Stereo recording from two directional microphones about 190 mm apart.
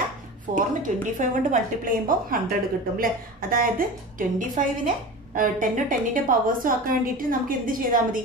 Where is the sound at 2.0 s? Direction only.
50° right (ahead or behind).